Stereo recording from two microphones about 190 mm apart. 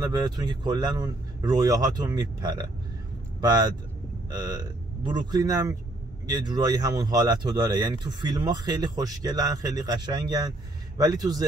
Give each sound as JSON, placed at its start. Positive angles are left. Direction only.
{"t": 0.0, "sound": "speech", "side_deg": -20}